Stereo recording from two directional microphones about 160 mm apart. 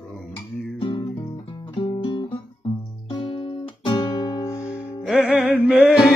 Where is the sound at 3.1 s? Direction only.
35° left (ahead or behind); by 4.8 s 15° left (ahead or behind).